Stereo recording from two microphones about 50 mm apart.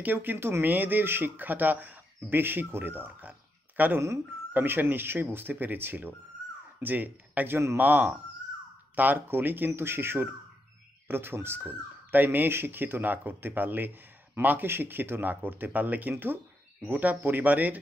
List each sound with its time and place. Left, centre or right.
0.0 s speech: right